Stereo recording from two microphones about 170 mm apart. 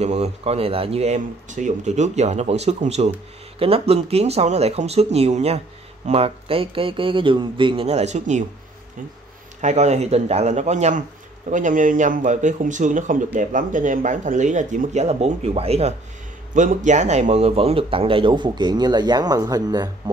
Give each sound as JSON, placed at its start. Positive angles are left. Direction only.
{"t": 0.0, "sound": "speech", "side_deg": -40}
{"t": 9.6, "sound": "speech", "side_deg": -45}
{"t": 16.5, "sound": "speech", "side_deg": -45}